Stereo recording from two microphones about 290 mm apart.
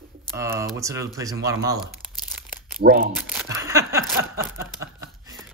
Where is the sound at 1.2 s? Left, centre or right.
Centre.